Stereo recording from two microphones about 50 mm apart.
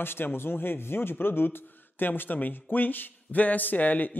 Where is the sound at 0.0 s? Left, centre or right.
Left.